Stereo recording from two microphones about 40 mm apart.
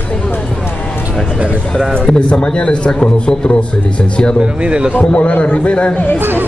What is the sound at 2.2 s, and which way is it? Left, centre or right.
A man's voice, left.